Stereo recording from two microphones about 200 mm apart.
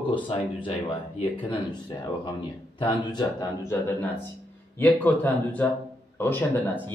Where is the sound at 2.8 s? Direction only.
20° left (ahead or behind).